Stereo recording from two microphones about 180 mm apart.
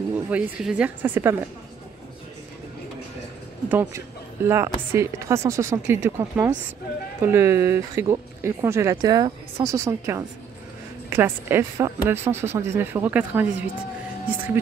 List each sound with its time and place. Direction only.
0.1 s speech: 5° right (ahead or behind)
3.6 s speech: 10° right (ahead or behind)